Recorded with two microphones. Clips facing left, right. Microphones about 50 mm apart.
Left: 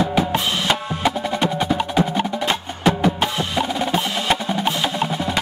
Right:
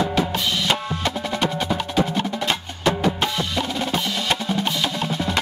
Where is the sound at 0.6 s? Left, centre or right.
Centre.